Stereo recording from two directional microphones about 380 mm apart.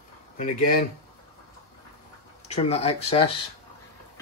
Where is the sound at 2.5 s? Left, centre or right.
Centre.